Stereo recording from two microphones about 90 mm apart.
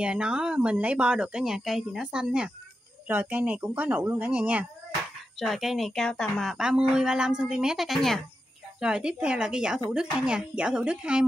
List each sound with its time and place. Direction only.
0.0 s speech: 10° right (ahead or behind)
5.4 s speech: centre (ahead or behind)
6.5 s speech: 10° right (ahead or behind)